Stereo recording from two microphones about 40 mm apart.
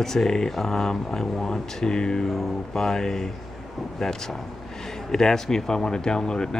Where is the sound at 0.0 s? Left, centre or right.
Centre.